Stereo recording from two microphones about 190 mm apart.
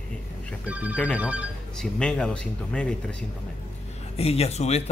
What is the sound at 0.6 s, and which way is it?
Speech, 5° right (ahead or behind).